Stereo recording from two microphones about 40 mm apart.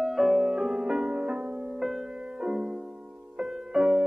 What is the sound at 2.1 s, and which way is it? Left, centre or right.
Music, right.